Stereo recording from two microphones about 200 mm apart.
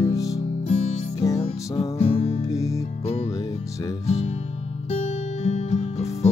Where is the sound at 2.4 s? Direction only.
15° left (ahead or behind).